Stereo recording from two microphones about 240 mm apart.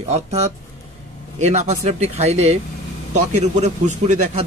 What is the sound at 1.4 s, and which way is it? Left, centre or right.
A man's voice, right.